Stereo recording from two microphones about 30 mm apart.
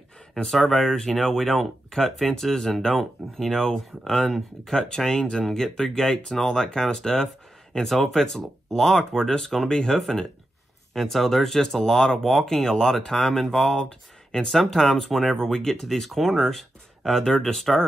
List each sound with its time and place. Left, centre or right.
0.6 s speech: centre
14.5 s speech: centre